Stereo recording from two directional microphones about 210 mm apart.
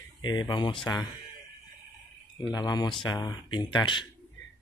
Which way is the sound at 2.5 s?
20° left (ahead or behind).